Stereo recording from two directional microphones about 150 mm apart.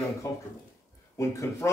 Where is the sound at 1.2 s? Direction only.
20° left (ahead or behind).